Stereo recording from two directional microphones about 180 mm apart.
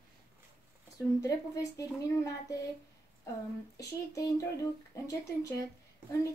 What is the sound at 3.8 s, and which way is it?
A woman's voice, 15° left (ahead or behind).